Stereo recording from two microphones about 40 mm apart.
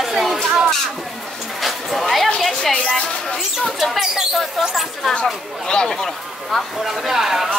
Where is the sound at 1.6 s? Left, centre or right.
Centre.